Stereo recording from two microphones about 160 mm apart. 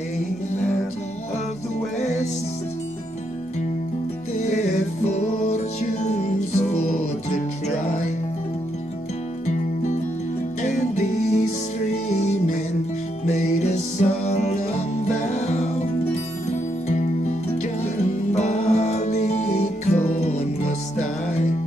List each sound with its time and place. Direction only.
4.6 s music: 45° left (ahead or behind)
10.6 s music: 50° left (ahead or behind)